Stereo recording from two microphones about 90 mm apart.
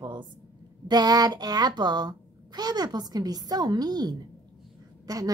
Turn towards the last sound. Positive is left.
turn(degrees=-40)  # may be behind; listen again after turning